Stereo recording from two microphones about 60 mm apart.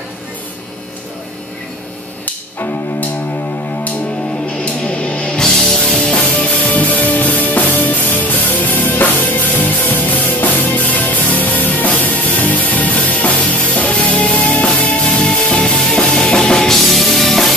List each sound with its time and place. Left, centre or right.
2.2 s cello: left
4.6 s music: centre
6.7 s music: left
15.0 s music: centre